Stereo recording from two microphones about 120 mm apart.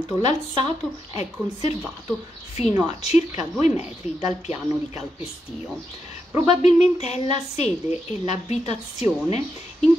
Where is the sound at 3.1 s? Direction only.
70° left (ahead or behind).